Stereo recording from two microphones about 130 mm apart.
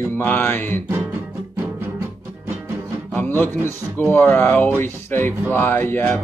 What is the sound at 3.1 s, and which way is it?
Speech, 15° left (ahead or behind).